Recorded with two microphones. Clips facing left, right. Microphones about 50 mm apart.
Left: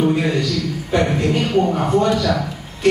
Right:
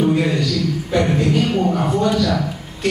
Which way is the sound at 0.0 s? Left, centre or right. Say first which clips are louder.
Right 1 dB; centre.